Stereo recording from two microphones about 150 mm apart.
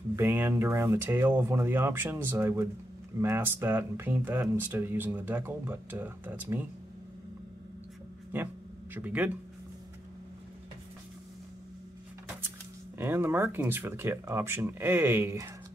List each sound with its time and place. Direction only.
0.1 s speech: 15° right (ahead or behind)
8.9 s speech: 10° right (ahead or behind)
12.9 s speech: 15° right (ahead or behind)